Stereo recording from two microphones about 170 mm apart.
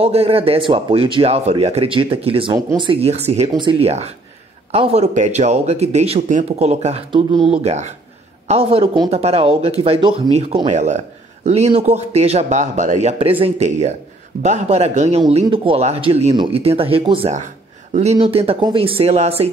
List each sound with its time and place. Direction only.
0.0 s speech: 35° right (ahead or behind)
7.6 s speech: 45° right (ahead or behind)